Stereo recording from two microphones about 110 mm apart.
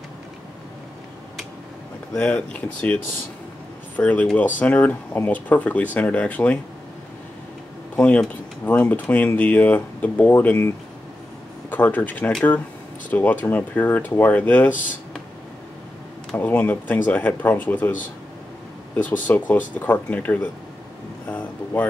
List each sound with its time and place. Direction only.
2.1 s speech: 10° left (ahead or behind)
7.9 s speech: 10° left (ahead or behind)
11.7 s speech: 15° left (ahead or behind)
16.3 s speech: 15° left (ahead or behind)
19.0 s speech: 15° left (ahead or behind)
21.3 s a sound: 15° left (ahead or behind)